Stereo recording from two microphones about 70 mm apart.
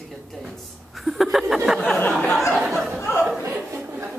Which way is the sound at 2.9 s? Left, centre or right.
Left.